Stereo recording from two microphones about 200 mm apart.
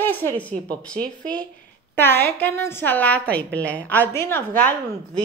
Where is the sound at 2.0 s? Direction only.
10° left (ahead or behind).